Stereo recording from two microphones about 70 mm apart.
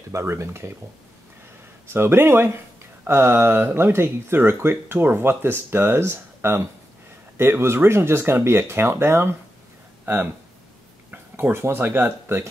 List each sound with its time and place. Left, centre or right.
0.1 s speech: right
1.9 s speech: right
11.1 s a sound: right
11.5 s speech: right